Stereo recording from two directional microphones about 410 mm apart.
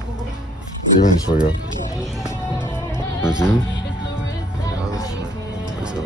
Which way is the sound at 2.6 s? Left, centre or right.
Centre.